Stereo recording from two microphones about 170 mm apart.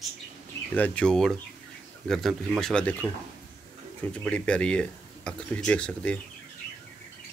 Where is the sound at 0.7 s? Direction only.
10° left (ahead or behind).